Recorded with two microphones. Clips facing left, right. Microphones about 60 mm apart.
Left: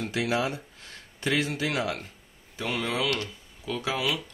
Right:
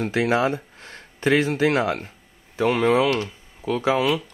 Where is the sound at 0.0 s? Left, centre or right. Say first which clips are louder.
Right 7 dB; right.